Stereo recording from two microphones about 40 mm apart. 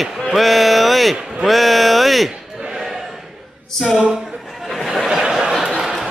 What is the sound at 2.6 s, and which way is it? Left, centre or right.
Choir, centre.